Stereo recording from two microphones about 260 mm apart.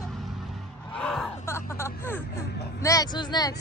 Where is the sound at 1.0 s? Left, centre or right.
Centre.